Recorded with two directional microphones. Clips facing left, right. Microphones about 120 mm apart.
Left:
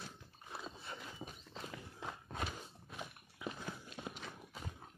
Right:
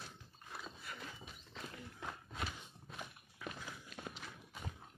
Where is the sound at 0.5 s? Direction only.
25° left (ahead or behind).